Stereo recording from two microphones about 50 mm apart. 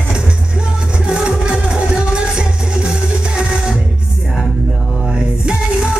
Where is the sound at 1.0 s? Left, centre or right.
Centre.